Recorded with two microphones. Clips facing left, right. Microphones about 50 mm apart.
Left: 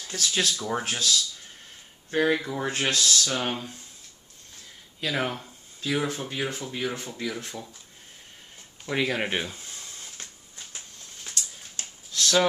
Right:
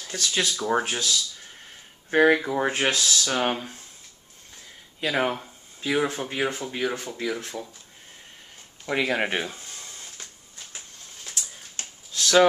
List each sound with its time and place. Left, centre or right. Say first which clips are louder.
0.3 s speech: right 1 dB; centre
0.6 s speech: right 5 dB; right
0.8 s speech: even; centre
2.0 s speech: right 5 dB; right
5.0 s speech: right 4 dB; centre
8.8 s speech: right 2 dB; centre
11.2 s a sound: left 1 dB; right
12.2 s a sound: right 5 dB; centre